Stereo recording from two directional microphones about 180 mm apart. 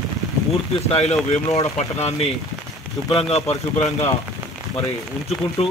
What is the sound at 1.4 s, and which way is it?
Speech, 15° left (ahead or behind).